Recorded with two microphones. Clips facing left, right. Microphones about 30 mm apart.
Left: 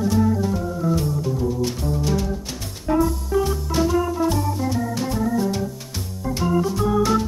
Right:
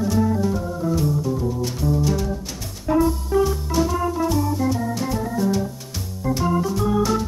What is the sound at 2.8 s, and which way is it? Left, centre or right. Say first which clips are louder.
Music: right 1 dB; centre.